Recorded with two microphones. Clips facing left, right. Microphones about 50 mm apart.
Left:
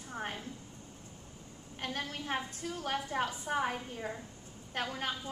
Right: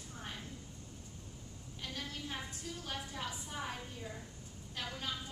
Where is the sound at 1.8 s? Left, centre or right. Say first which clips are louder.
Left 6 dB; left.